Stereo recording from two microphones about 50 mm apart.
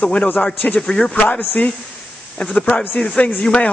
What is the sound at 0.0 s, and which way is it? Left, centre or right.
A man's voice, left.